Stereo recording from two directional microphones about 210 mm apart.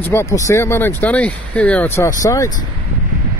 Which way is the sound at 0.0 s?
10° left (ahead or behind).